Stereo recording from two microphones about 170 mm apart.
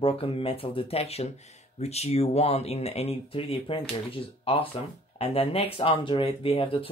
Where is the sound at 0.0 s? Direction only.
35° left (ahead or behind).